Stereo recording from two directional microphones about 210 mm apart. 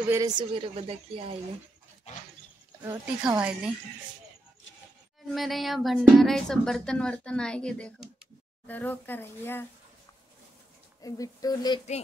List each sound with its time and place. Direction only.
0.1 s speech: 20° right (ahead or behind)
2.8 s a woman's voice: 5° right (ahead or behind)
5.3 s a woman's voice: centre (ahead or behind)
11.0 s a sound: 15° left (ahead or behind)